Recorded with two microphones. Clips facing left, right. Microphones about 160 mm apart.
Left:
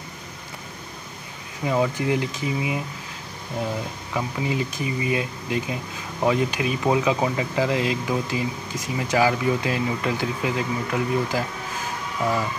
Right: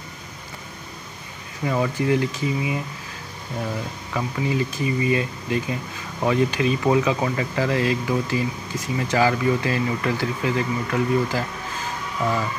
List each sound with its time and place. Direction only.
1.7 s speech: 15° left (ahead or behind)
4.1 s speech: 15° left (ahead or behind)